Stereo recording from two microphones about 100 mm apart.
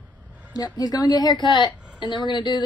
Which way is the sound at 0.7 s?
40° left (ahead or behind).